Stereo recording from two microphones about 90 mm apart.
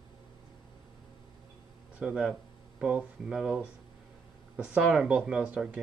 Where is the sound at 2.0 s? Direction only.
10° right (ahead or behind).